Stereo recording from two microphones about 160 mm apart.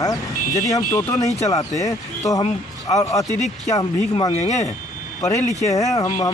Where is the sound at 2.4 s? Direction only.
40° left (ahead or behind).